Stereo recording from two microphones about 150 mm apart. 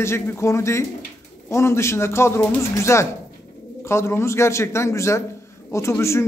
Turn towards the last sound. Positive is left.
turn(degrees=20)  # may be behind; listen again after turning